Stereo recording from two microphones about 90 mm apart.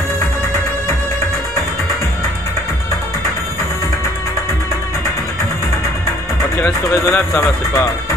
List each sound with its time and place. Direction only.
6.6 s speech: 25° left (ahead or behind)